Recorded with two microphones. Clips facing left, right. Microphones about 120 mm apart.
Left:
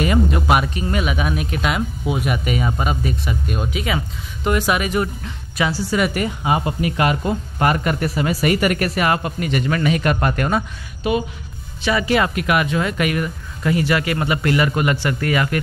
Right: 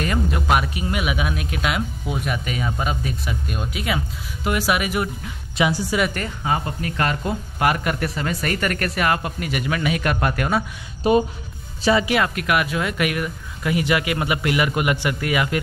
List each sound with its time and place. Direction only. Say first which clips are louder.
0.0 s a sound: left 5 dB; 5° left (ahead or behind)
0.7 s speech: left 2 dB; 10° right (ahead or behind)
5.9 s speech: left 3 dB; 5° left (ahead or behind)
7.2 s speech: left 2 dB; centre (ahead or behind)
11.0 s speech: right 3 dB; 40° right (ahead or behind)
11.8 s speech: right 2 dB; 25° right (ahead or behind)
12.1 s speech: left 3 dB; centre (ahead or behind)